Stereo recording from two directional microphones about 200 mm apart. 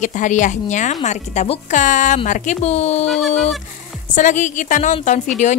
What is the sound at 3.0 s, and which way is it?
Speech, 5° left (ahead or behind).